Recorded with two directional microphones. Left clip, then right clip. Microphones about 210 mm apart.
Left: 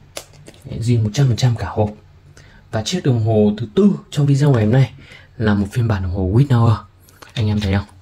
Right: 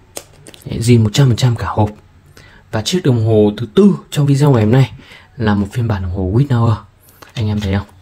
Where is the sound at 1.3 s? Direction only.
15° right (ahead or behind).